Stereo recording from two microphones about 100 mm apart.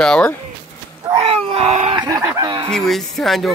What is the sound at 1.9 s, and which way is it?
Chicken, 40° right (ahead or behind).